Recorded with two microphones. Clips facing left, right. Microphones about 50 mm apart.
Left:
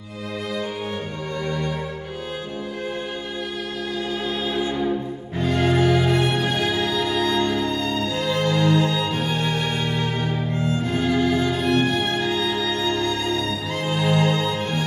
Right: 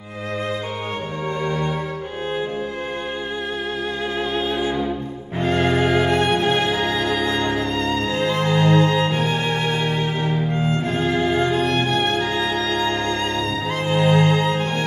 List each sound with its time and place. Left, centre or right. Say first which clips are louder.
4.6 s music: right 1 dB; centre
5.4 s music: right 1 dB; right
9.5 s music: right 3 dB; centre